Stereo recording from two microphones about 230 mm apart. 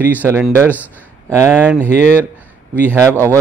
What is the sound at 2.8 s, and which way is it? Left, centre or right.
Speech, centre.